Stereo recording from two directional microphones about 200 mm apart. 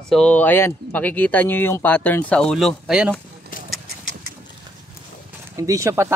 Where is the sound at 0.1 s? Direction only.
5° left (ahead or behind).